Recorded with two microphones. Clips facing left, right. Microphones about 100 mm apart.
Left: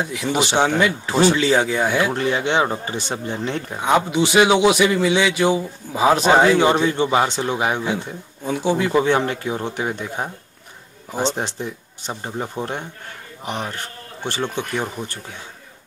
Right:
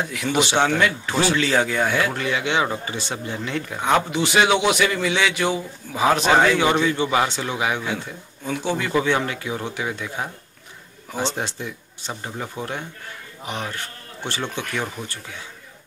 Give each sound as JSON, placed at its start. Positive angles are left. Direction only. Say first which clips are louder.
{"t": 0.0, "sound": "a man's voice", "louder": "left 1 dB", "side_deg": 20}
{"t": 2.1, "sound": "speech", "louder": "left 3 dB", "side_deg": 35}
{"t": 3.8, "sound": "a man's voice", "louder": "left 3 dB", "side_deg": 15}
{"t": 9.2, "sound": "speech", "louder": "left 4 dB", "side_deg": 35}